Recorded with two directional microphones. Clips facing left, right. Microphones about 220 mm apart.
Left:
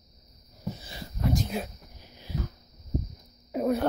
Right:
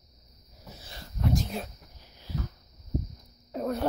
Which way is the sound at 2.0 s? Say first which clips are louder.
Left 3 dB; 15° left (ahead or behind).